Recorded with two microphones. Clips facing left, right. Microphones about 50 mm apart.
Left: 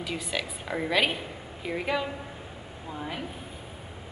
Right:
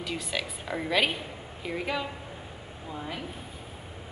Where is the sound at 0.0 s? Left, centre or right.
Centre.